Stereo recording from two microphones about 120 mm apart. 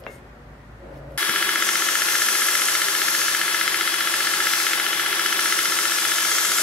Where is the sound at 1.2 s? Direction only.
10° left (ahead or behind).